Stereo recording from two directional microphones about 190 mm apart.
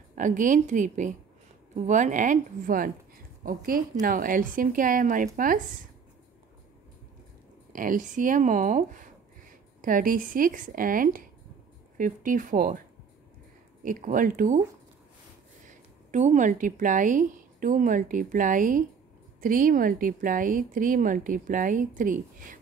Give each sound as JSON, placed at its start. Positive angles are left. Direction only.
{"t": 0.1, "sound": "speech", "side_deg": -45}
{"t": 7.7, "sound": "speech", "side_deg": -45}
{"t": 13.8, "sound": "speech", "side_deg": -45}
{"t": 15.6, "sound": "a woman's voice", "side_deg": -40}